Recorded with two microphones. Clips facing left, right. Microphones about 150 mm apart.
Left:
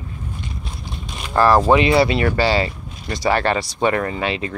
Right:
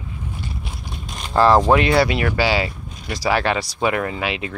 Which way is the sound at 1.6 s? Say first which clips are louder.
Left 1 dB; centre (ahead or behind).